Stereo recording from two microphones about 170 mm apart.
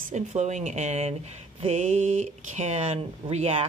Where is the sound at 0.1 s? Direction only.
45° right (ahead or behind).